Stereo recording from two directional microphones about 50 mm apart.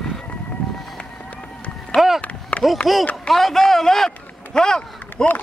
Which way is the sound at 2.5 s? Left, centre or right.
Left.